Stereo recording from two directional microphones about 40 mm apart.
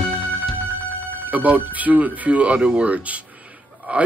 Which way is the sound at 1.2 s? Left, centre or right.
Right.